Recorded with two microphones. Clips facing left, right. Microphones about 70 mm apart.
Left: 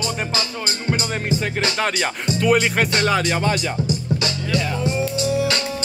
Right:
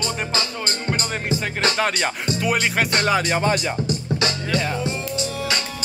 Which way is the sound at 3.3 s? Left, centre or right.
Right.